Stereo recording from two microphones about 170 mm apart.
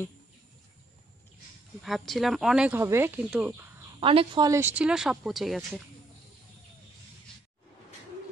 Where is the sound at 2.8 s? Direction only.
15° right (ahead or behind).